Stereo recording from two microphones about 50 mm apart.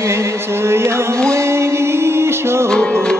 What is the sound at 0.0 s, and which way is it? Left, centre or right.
Music, right.